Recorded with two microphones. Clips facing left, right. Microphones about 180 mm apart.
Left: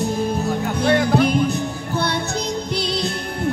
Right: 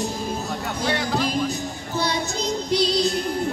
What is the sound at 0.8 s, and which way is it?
Music, 55° left (ahead or behind).